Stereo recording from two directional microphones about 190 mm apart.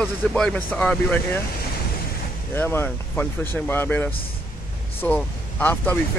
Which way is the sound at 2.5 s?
10° left (ahead or behind).